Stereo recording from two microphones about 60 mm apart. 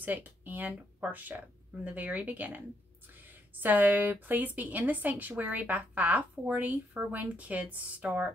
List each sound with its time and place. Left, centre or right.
0.0 s a woman's voice: right